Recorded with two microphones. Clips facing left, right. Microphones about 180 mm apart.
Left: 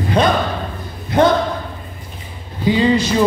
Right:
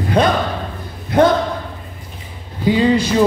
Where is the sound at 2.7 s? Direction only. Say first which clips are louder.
Even; 55° right (ahead or behind).